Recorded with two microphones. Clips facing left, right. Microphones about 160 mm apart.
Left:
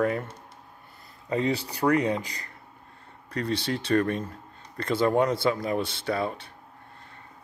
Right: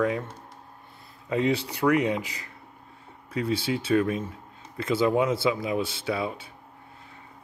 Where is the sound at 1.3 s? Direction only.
Centre (ahead or behind).